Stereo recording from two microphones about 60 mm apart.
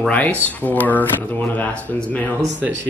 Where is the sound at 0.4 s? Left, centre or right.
Left.